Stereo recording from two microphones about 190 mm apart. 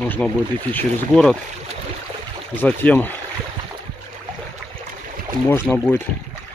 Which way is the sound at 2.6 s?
10° left (ahead or behind).